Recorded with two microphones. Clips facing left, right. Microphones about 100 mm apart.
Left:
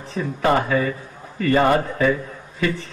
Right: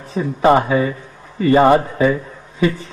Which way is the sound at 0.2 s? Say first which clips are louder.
Right 6 dB; 20° right (ahead or behind).